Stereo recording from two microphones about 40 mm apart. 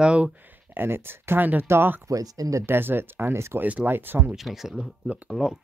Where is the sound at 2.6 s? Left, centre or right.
Right.